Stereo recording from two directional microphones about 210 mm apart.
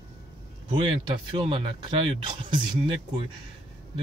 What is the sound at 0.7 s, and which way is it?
Speech, 25° right (ahead or behind).